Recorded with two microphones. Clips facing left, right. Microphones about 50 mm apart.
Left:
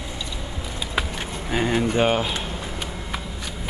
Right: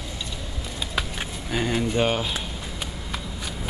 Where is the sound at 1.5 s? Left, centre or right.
Centre.